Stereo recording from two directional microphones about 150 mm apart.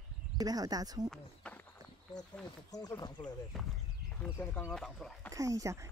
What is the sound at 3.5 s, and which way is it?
Speech, centre (ahead or behind).